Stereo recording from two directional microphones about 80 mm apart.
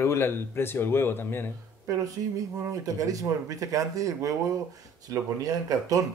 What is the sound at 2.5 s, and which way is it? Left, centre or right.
Speech, right.